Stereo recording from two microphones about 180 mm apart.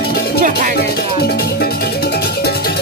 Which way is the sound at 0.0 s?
60° left (ahead or behind).